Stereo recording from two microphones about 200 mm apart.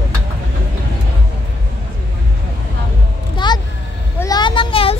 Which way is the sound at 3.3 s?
20° left (ahead or behind).